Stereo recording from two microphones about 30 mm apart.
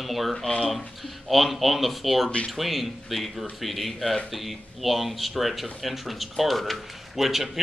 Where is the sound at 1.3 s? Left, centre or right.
Centre.